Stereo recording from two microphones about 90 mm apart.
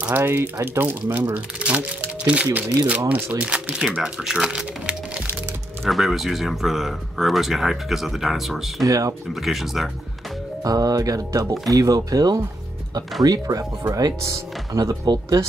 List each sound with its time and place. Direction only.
0.0 s speech: 25° right (ahead or behind)
5.9 s speech: centre (ahead or behind)
8.8 s speech: 40° right (ahead or behind)
9.3 s speech: 5° right (ahead or behind)
10.6 s speech: 45° right (ahead or behind)